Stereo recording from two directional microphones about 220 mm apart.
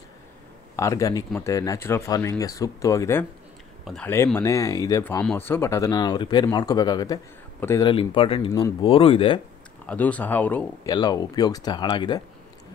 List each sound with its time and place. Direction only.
0.7 s speech: 15° left (ahead or behind)
7.9 s speech: 25° left (ahead or behind)
9.8 s speech: 5° left (ahead or behind)